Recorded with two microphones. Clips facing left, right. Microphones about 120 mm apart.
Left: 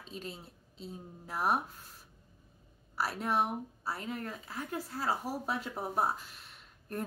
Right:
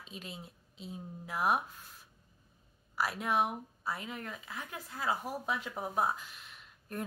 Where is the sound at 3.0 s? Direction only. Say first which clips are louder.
Even; 35° left (ahead or behind).